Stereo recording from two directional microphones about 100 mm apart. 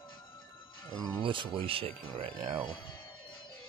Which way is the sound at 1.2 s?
60° right (ahead or behind).